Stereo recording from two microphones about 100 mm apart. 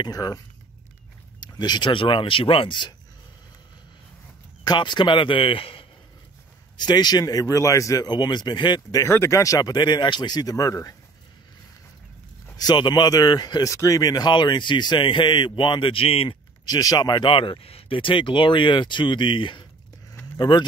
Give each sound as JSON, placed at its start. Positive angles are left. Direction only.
{"t": 0.0, "sound": "speech", "side_deg": 40}
{"t": 1.4, "sound": "speech", "side_deg": 45}
{"t": 4.6, "sound": "speech", "side_deg": 50}
{"t": 6.8, "sound": "speech", "side_deg": 45}
{"t": 8.1, "sound": "speech", "side_deg": 45}
{"t": 9.0, "sound": "speech", "side_deg": 30}
{"t": 12.5, "sound": "speech", "side_deg": 45}
{"t": 13.7, "sound": "speech", "side_deg": 30}
{"t": 16.6, "sound": "speech", "side_deg": 40}